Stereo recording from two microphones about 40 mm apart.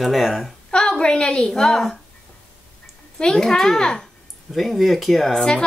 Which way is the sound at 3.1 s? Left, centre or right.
Centre.